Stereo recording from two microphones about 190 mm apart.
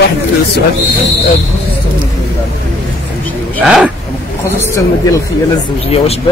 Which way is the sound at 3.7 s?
5° right (ahead or behind).